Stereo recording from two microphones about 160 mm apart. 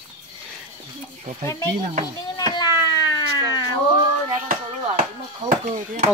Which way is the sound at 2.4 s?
25° left (ahead or behind).